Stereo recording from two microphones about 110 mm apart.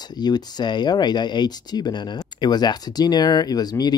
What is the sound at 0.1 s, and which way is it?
Speech, 40° left (ahead or behind).